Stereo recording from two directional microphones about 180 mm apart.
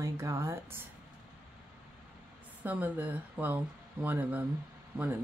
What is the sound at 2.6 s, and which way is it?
Speech, 10° right (ahead or behind).